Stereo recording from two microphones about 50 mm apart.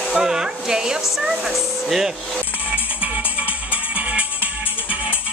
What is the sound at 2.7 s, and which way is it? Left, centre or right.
Music, right.